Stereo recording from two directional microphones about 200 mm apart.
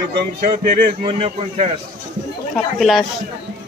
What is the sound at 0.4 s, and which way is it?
A man's voice, 40° right (ahead or behind).